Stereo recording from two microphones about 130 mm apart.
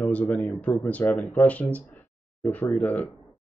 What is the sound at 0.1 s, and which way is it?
Speech, 10° left (ahead or behind).